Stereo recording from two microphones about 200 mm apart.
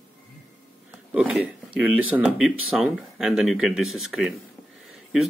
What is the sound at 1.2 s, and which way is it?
Speech, 5° right (ahead or behind).